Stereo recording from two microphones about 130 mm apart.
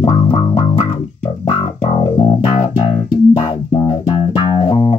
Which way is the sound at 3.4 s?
35° left (ahead or behind).